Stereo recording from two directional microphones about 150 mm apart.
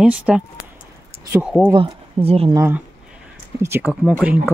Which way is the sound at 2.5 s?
15° right (ahead or behind).